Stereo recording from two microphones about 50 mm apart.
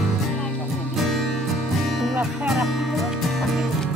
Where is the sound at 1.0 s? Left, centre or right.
Centre.